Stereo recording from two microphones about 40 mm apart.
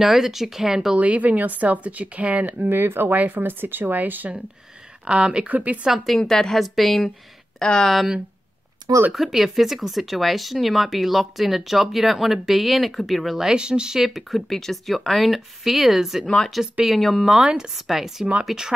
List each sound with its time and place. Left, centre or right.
0.0 s speech: centre
0.9 s speech: right
2.4 s speech: right
5.0 s speech: right
5.5 s speech: right
6.0 s a woman's voice: centre
6.6 s speech: centre
9.1 s speech: centre
13.4 s speech: centre
13.9 s speech: centre
17.4 s speech: right
17.7 s speech: centre